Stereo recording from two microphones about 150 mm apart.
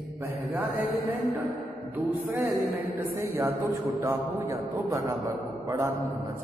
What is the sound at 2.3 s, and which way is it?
A man's voice, 15° right (ahead or behind).